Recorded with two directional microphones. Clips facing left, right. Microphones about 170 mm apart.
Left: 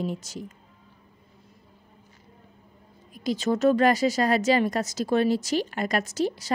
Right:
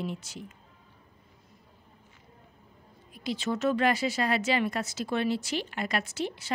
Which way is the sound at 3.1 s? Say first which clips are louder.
Left 6 dB; 45° left (ahead or behind).